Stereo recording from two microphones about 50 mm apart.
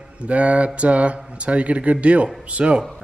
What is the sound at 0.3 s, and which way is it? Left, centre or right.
Speech, right.